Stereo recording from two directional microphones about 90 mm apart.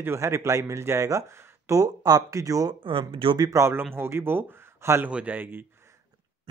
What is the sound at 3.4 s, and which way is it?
A man's voice, 35° right (ahead or behind).